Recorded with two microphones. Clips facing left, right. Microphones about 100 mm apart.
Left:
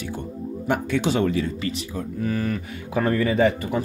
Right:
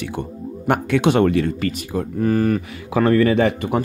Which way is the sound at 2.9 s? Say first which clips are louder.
Right 6 dB; 80° right.